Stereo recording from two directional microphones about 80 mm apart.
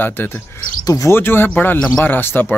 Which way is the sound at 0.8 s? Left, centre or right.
Left.